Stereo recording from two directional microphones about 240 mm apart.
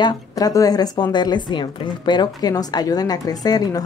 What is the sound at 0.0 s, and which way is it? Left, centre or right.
Speech, centre.